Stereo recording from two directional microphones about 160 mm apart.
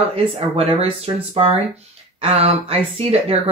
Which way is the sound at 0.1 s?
35° right (ahead or behind).